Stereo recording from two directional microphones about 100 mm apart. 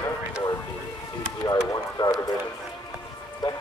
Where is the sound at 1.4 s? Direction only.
40° left (ahead or behind).